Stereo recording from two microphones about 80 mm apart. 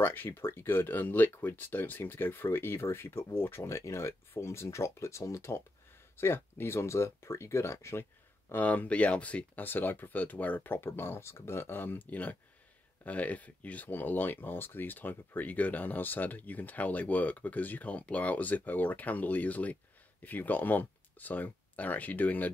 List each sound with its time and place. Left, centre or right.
0.0 s speech: left